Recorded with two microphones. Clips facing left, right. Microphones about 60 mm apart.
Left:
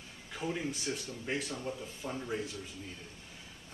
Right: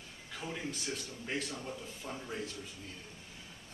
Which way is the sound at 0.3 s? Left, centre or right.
Centre.